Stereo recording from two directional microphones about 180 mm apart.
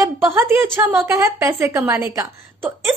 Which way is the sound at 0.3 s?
15° right (ahead or behind).